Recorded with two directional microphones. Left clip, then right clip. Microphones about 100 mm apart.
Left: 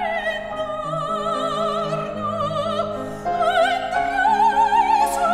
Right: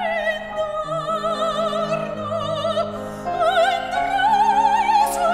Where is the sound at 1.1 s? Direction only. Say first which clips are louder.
Right 2 dB; 35° right (ahead or behind).